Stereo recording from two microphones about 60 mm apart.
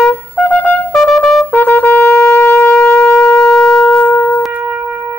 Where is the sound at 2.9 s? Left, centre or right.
Centre.